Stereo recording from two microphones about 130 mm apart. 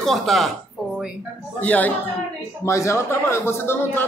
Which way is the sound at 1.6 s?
10° left (ahead or behind).